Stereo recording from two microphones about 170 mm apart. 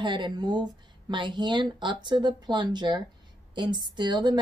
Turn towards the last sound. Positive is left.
turn(degrees=-25)  # may be behind; listen again after turning